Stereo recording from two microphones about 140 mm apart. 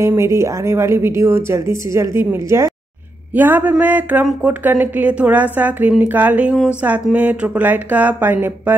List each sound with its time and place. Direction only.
0.0 s a woman's voice: 20° right (ahead or behind)